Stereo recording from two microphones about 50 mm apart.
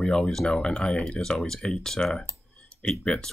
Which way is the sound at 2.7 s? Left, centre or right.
Centre.